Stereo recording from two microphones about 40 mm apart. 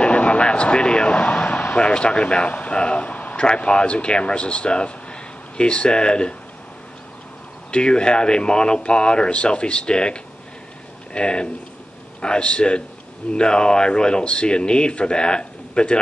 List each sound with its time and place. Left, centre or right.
0.0 s a sound: left
1.8 s speech: left
3.3 s speech: left
7.7 s speech: left